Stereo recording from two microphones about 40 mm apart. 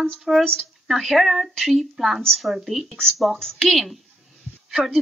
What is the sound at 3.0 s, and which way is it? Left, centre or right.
Speech, centre.